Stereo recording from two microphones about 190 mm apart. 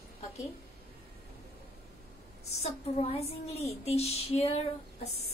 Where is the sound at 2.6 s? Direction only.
35° left (ahead or behind).